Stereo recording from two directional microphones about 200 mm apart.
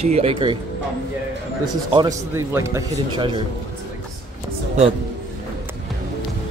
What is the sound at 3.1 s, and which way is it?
Speech, 25° right (ahead or behind).